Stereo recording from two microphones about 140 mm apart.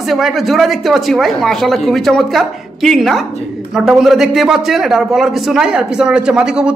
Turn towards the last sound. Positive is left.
turn(degrees=-5)  # may be behind; listen again after turning